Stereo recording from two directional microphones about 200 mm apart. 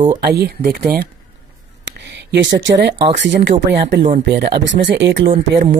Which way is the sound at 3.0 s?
35° right (ahead or behind).